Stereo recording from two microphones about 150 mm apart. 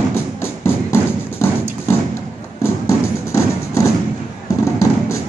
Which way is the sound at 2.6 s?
20° left (ahead or behind).